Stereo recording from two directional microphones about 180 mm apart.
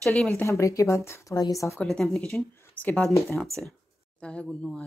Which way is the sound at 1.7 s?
Centre (ahead or behind).